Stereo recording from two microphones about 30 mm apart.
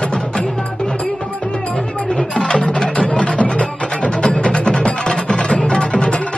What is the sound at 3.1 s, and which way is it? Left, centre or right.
Music, left.